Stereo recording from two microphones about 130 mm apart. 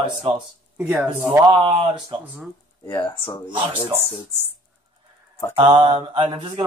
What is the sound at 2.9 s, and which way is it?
Speech, 15° left (ahead or behind).